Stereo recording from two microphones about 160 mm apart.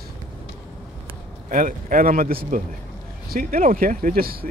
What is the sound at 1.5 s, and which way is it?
Speech, 60° right (ahead or behind).